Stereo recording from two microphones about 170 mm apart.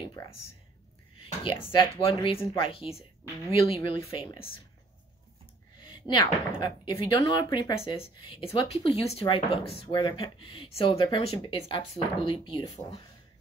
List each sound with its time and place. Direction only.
1.1 s speech: 30° left (ahead or behind)
5.9 s speech: 25° left (ahead or behind)